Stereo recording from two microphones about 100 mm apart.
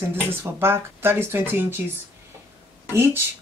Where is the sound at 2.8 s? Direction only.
25° right (ahead or behind).